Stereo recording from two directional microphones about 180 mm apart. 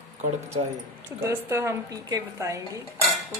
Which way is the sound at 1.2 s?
15° right (ahead or behind).